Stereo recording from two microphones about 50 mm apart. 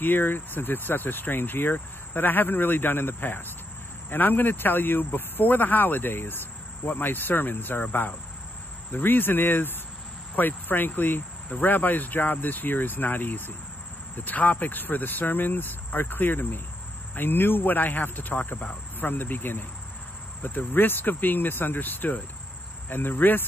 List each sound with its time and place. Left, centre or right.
0.0 s a man's voice: left